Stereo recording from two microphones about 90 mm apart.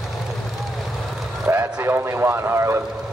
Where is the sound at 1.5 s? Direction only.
30° right (ahead or behind).